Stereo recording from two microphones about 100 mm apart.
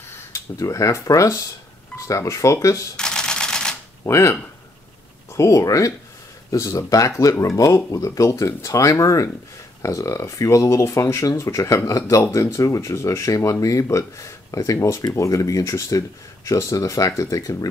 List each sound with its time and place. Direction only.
0.1 s speech: 30° left (ahead or behind)
3.0 s camera: 5° left (ahead or behind)
4.0 s speech: 30° left (ahead or behind)